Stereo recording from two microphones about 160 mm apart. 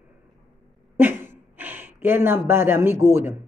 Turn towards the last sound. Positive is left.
turn(degrees=-15)  # may be behind; listen again after turning